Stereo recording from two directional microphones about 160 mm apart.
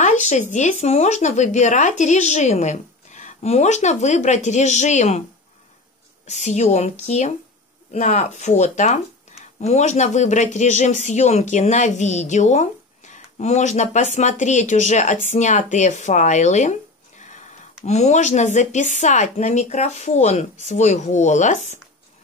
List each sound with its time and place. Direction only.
0.0 s speech: 45° left (ahead or behind)
6.2 s speech: 45° left (ahead or behind)
17.2 s a sound: 50° left (ahead or behind)
17.8 s speech: 45° left (ahead or behind)